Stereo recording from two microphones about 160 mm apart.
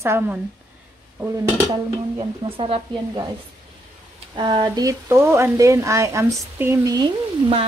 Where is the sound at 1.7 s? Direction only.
35° right (ahead or behind).